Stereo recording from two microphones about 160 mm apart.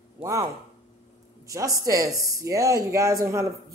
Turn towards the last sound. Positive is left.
turn(degrees=-20)  # may be behind; listen again after turning